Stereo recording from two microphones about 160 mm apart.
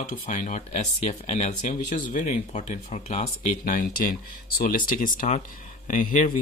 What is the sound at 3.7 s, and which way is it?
Speech, 60° left (ahead or behind).